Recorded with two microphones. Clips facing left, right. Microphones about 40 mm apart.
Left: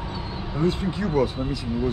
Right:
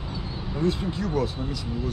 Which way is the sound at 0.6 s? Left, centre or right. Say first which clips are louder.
Left 2 dB; centre.